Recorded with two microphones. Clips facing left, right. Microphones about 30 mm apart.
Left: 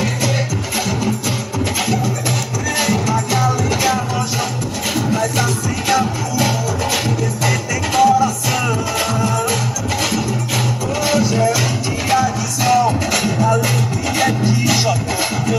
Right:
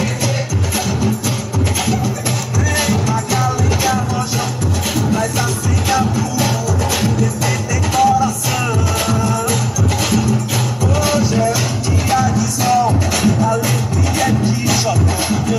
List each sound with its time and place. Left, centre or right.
0.7 s music: centre
2.7 s music: centre
5.1 s music: centre